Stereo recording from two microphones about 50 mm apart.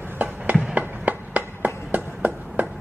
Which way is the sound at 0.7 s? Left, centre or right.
Right.